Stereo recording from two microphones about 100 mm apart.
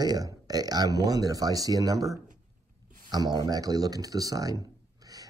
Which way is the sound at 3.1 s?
45° right (ahead or behind).